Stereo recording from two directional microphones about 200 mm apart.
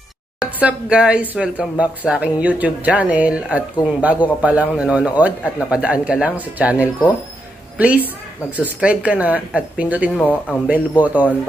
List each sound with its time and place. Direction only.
0.4 s a woman's voice: 5° right (ahead or behind)